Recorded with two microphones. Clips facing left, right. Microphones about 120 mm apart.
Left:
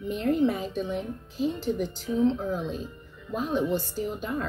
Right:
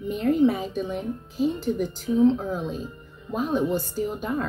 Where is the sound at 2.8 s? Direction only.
45° right (ahead or behind).